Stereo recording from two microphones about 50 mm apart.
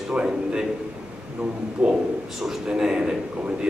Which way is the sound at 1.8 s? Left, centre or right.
Right.